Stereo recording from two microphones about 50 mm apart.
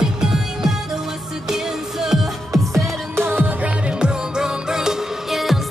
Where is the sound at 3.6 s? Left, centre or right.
Centre.